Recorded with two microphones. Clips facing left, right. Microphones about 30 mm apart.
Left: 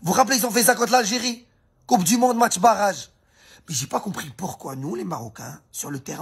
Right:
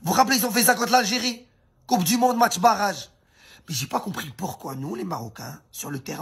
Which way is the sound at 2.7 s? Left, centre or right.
Centre.